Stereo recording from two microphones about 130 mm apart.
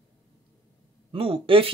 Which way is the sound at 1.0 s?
45° right (ahead or behind).